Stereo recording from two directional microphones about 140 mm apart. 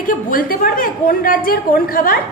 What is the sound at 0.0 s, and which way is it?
A woman's voice, 90° left.